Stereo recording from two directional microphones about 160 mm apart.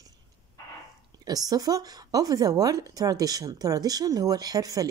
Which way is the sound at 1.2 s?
25° right (ahead or behind).